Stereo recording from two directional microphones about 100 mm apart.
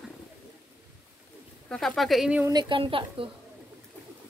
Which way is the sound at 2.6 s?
60° right (ahead or behind).